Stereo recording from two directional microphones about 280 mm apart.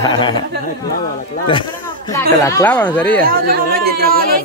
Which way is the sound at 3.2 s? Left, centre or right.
Right.